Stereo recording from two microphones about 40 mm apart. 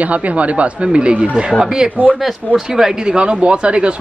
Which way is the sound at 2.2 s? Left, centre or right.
Centre.